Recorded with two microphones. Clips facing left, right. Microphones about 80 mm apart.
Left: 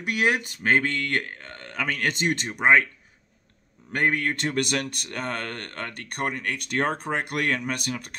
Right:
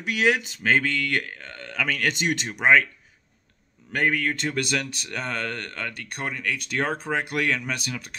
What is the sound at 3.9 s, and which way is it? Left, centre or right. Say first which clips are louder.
Speech: even; left.